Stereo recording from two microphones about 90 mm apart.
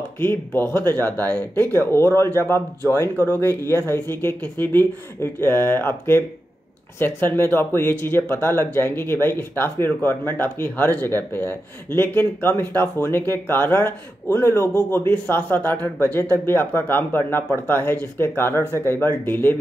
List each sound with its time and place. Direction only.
0.2 s speech: 25° left (ahead or behind)